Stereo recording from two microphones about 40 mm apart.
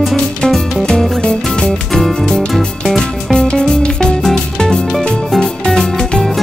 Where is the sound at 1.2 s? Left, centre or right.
Left.